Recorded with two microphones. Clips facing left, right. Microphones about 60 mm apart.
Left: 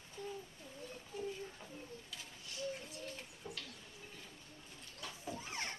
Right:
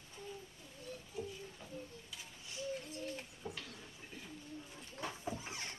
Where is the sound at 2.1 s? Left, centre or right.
Centre.